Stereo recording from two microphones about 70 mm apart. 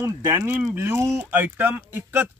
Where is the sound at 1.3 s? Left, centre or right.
Right.